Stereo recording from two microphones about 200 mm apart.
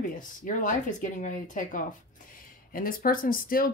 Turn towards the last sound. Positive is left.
turn(degrees=45)  # may be behind; listen again after turning